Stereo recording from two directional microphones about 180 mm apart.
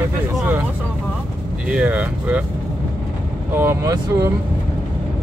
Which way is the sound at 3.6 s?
15° right (ahead or behind).